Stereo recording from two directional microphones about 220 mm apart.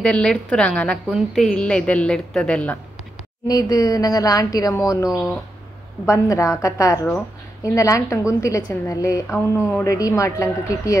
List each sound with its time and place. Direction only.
0.0 s a woman's voice: 5° left (ahead or behind)
3.4 s a woman's voice: 15° left (ahead or behind)